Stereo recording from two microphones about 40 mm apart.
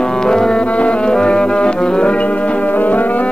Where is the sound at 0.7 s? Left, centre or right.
Left.